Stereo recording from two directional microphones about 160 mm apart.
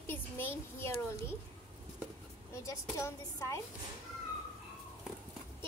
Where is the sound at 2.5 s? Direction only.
20° left (ahead or behind).